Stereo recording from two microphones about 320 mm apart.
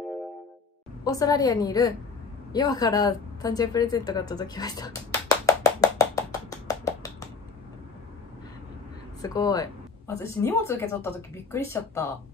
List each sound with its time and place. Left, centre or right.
1.0 s a woman's voice: centre
6.5 s a sound: centre
9.2 s speech: centre